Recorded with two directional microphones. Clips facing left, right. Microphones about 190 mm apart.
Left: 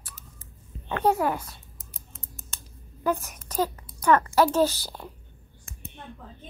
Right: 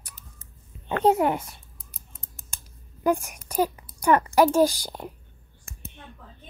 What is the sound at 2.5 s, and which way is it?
A child's voice, 15° right (ahead or behind).